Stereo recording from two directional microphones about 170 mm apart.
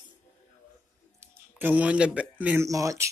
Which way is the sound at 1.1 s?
10° right (ahead or behind).